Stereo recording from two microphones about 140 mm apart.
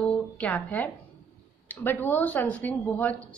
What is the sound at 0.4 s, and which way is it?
A woman's voice, 10° left (ahead or behind).